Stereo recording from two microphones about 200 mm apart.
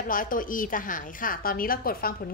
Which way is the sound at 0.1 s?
45° left (ahead or behind).